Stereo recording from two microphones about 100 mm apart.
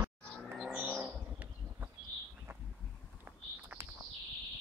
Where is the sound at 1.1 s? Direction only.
15° right (ahead or behind).